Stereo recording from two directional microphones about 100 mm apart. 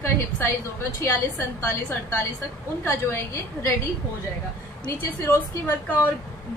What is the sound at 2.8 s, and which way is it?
Speech, 30° left (ahead or behind).